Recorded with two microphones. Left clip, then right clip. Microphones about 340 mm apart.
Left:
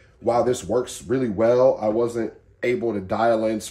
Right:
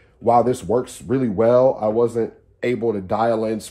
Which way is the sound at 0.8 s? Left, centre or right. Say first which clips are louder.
Right 2 dB; centre.